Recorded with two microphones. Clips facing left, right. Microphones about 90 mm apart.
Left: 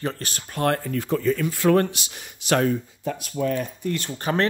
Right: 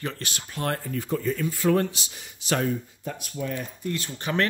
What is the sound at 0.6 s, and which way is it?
Speech, 70° left (ahead or behind).